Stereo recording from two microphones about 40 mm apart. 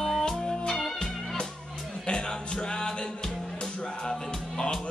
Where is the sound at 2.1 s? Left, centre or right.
Centre.